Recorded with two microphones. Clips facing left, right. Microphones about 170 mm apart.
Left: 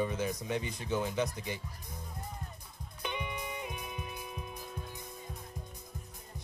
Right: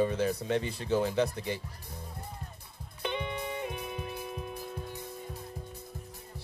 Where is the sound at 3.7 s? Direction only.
30° right (ahead or behind).